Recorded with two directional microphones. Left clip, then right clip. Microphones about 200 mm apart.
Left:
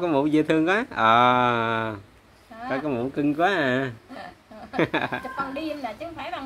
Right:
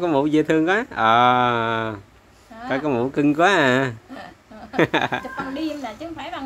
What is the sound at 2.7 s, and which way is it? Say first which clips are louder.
Speech: right 5 dB; 15° right (ahead or behind).